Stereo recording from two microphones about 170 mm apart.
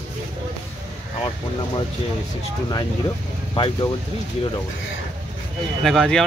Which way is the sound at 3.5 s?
30° left (ahead or behind).